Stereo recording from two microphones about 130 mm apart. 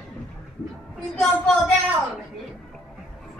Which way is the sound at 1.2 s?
10° left (ahead or behind).